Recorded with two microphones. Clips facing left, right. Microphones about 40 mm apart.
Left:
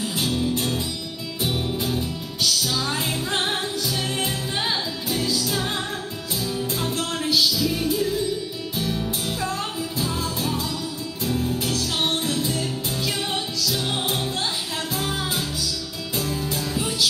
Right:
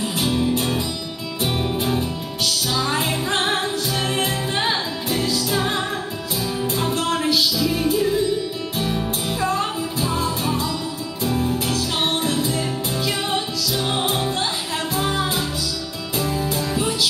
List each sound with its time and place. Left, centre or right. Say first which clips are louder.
0.0 s music: right 3 dB; centre